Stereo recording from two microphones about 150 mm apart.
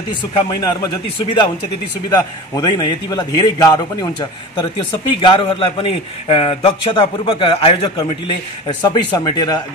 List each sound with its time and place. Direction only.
0.1 s a man's voice: 30° left (ahead or behind)
2.0 s a man's voice: 25° left (ahead or behind)